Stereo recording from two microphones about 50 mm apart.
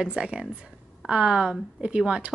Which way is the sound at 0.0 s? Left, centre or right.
Centre.